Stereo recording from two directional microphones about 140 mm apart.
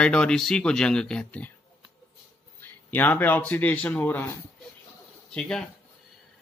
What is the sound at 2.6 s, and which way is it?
Speech, 10° left (ahead or behind).